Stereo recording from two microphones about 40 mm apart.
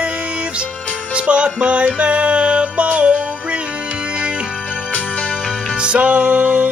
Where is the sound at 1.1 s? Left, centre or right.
Right.